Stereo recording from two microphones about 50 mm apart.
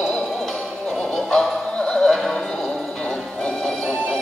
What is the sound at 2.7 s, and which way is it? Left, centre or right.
Music, left.